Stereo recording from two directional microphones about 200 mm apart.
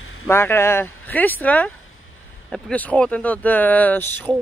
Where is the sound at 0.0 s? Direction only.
90° left.